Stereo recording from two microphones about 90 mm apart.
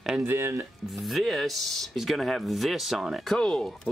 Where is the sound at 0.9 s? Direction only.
Centre (ahead or behind).